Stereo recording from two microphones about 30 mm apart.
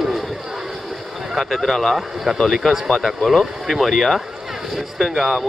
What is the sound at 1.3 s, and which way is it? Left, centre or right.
Speech, centre.